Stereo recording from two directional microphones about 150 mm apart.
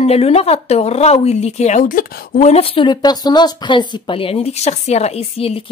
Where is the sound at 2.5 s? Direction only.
40° left (ahead or behind).